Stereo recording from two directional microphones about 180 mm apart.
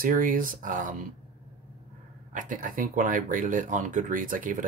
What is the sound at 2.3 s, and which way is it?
Speech, 45° right (ahead or behind).